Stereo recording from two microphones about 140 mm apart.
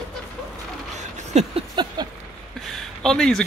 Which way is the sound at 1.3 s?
55° right (ahead or behind).